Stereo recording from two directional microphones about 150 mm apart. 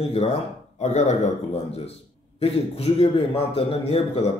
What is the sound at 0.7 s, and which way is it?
A man's voice, 50° left (ahead or behind).